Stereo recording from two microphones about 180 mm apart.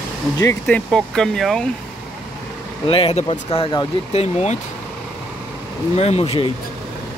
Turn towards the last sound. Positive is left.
turn(degrees=35)  # may be behind; listen again after turning